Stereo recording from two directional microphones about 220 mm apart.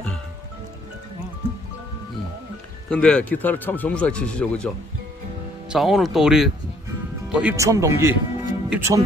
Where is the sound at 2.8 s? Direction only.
5° left (ahead or behind).